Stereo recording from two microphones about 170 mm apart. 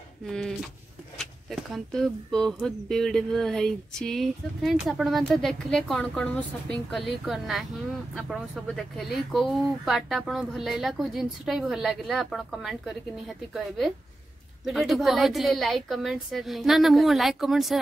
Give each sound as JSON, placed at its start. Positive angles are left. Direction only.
{"t": 0.3, "sound": "speech", "side_deg": 0}